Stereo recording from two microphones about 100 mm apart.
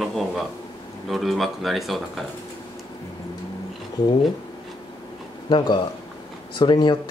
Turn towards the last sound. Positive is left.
turn(degrees=50)  # may be behind; listen again after turning